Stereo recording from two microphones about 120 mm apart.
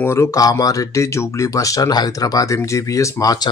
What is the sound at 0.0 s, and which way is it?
A man's voice, 20° left (ahead or behind).